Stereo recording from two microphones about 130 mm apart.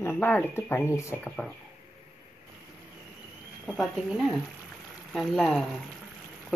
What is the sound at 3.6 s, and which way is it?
Speech, centre (ahead or behind).